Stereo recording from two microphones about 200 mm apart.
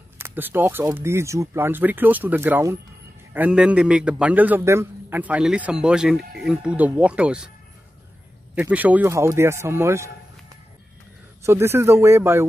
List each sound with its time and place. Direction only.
0.2 s a man's voice: 10° right (ahead or behind)
8.5 s speech: 5° right (ahead or behind)
11.4 s speech: 15° right (ahead or behind)